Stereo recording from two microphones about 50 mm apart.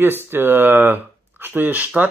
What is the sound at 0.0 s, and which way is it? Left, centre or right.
Speech, right.